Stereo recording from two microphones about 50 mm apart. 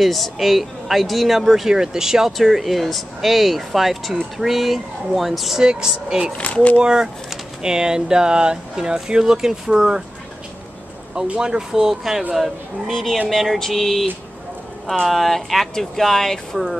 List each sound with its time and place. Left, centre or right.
0.0 s speech: centre
5.6 s speech: centre
6.3 s speech: left
6.8 s speech: centre
11.3 s speech: centre
12.9 s speech: centre